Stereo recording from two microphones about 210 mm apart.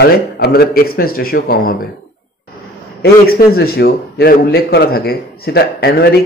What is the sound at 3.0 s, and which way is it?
A man's voice, 45° left (ahead or behind).